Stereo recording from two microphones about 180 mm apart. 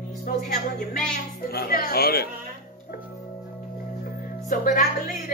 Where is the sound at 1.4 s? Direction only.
55° left (ahead or behind).